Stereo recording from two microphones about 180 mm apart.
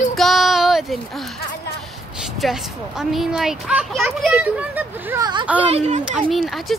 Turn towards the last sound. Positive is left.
turn(degrees=0)  # may be behind; listen again after turning